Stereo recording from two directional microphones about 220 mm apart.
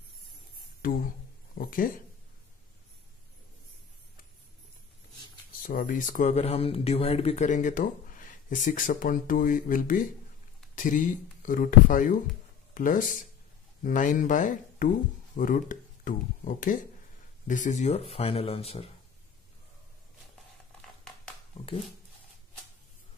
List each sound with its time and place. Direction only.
0.8 s speech: 40° left (ahead or behind)
5.6 s speech: 40° left (ahead or behind)